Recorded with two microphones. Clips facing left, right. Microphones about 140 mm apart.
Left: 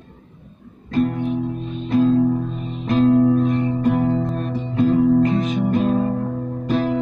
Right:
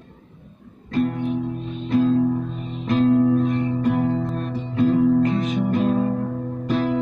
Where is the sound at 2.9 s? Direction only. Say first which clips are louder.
Left 2 dB; 30° left (ahead or behind).